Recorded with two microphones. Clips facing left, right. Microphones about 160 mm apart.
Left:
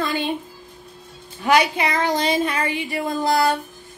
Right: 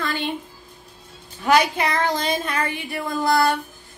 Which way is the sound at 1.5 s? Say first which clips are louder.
Even; 10° left (ahead or behind).